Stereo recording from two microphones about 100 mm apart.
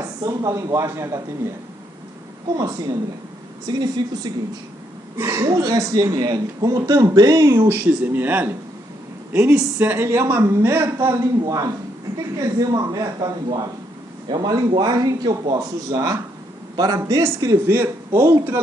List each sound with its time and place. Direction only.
0.2 s speech: 35° right (ahead or behind)
2.5 s speech: 35° right (ahead or behind)
5.1 s a woman's voice: 30° right (ahead or behind)
11.4 s a man's voice: 35° right (ahead or behind)